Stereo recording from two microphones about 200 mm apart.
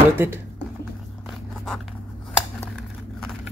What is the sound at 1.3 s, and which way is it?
Zipper, 5° left (ahead or behind).